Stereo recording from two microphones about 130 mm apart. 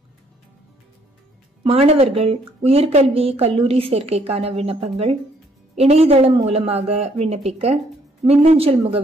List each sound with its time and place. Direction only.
1.6 s a woman's voice: 50° right (ahead or behind)